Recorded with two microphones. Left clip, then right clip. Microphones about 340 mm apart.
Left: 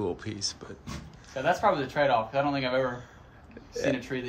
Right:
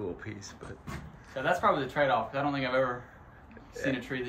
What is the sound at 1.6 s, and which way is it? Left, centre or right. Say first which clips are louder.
Speech: left 1 dB; left.